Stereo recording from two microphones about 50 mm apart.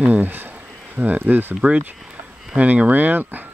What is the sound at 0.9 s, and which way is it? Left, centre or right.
Speech, right.